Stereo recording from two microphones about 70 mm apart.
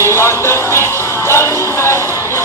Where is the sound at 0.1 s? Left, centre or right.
Left.